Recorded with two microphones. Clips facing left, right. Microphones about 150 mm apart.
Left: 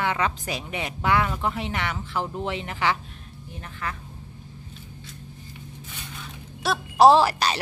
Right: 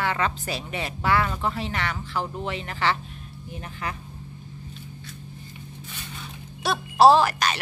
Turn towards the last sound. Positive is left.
turn(degrees=30)  # may be behind; listen again after turning